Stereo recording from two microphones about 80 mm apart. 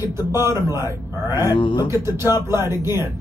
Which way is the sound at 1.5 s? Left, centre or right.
Left.